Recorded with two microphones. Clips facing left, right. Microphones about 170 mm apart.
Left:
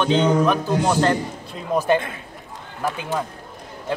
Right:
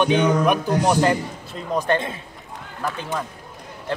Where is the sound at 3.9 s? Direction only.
Centre (ahead or behind).